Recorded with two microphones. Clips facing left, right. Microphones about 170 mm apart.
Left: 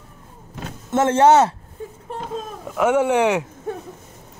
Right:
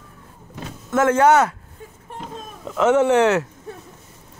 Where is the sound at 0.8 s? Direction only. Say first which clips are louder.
Left 1 dB; 25° left (ahead or behind).